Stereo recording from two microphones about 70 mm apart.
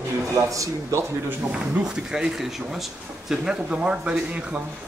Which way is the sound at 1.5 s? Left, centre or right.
Centre.